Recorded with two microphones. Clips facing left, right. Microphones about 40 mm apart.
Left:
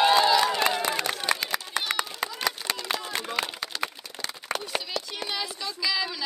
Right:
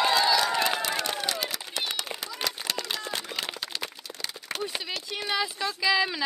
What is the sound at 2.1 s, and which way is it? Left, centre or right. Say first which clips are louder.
Run: left 4 dB; right.